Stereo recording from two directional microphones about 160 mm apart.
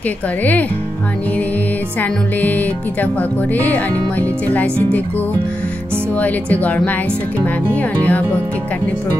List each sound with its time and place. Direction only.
0.4 s speech: 10° left (ahead or behind)
2.0 s speech: 10° left (ahead or behind)
6.1 s speech: 10° left (ahead or behind)